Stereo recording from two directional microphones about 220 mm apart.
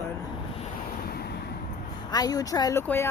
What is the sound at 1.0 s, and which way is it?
Vehicle, 45° left (ahead or behind).